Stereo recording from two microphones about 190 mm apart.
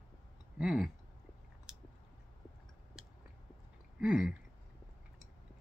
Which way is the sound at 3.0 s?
5° right (ahead or behind).